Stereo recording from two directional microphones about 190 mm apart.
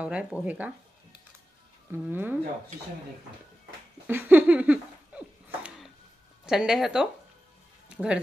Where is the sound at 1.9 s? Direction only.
10° right (ahead or behind).